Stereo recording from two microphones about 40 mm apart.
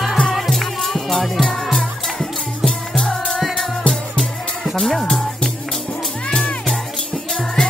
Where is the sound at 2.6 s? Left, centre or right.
Centre.